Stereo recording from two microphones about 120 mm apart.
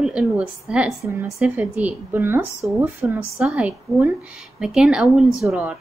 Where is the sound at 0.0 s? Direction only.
5° right (ahead or behind).